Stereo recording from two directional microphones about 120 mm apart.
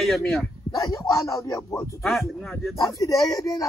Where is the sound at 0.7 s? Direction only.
30° left (ahead or behind).